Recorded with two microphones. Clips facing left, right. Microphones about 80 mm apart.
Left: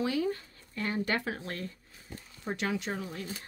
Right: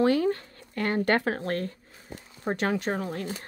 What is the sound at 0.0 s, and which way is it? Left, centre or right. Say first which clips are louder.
Speech: right 7 dB; right.